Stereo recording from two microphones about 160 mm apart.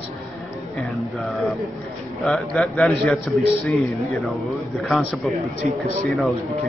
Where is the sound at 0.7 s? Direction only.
Centre (ahead or behind).